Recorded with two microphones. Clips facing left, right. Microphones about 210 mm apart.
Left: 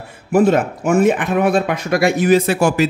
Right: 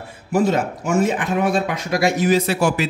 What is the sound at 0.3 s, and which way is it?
Speech, 55° left (ahead or behind).